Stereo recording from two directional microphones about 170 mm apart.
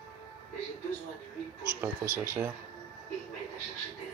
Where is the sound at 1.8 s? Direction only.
15° right (ahead or behind).